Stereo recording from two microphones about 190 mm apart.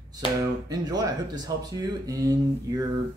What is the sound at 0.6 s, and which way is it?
Speech, 20° right (ahead or behind).